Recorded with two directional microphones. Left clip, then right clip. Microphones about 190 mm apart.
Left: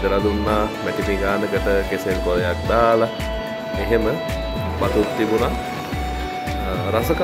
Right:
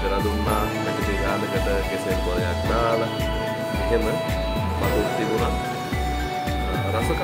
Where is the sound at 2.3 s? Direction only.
20° left (ahead or behind).